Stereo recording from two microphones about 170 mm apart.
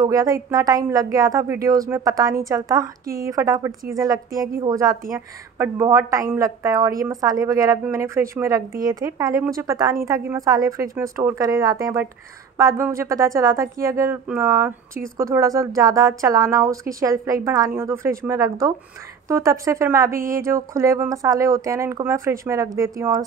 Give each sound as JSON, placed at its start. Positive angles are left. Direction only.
{"t": 0.0, "sound": "speech", "side_deg": -20}